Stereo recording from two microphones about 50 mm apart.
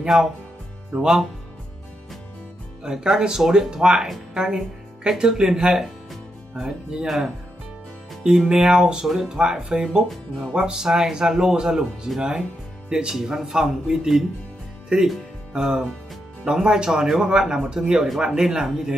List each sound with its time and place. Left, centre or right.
0.0 s speech: centre
2.8 s speech: centre
7.1 s speech: centre
18.0 s speech: centre
18.3 s speech: centre